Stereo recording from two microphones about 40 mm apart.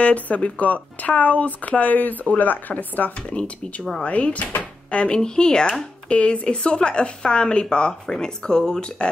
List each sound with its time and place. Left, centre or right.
0.0 s speech: left
3.3 s speech: left
6.0 s speech: left